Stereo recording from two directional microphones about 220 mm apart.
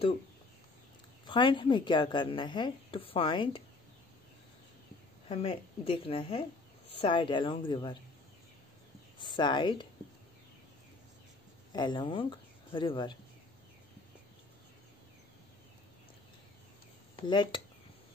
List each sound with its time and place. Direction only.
1.2 s a woman's voice: 20° left (ahead or behind)
5.3 s a woman's voice: 25° left (ahead or behind)
9.2 s a woman's voice: 20° left (ahead or behind)
11.7 s speech: 20° left (ahead or behind)
17.2 s a woman's voice: 20° left (ahead or behind)